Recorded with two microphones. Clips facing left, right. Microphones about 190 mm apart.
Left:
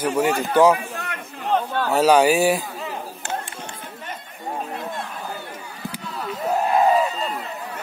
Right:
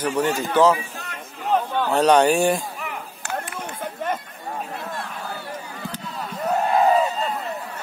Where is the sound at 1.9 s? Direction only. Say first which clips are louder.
Left 1 dB; 5° left (ahead or behind).